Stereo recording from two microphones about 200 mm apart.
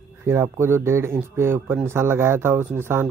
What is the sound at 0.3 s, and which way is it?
Speech, 10° right (ahead or behind).